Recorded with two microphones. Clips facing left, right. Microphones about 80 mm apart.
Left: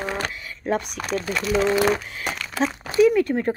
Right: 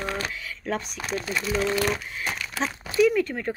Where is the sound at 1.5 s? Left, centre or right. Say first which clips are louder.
Left 6 dB; left.